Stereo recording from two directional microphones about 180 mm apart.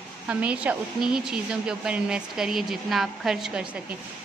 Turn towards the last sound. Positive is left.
turn(degrees=0)  # may be behind; listen again after turning